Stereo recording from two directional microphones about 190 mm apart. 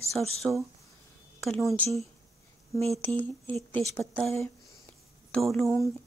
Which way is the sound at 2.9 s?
10° left (ahead or behind).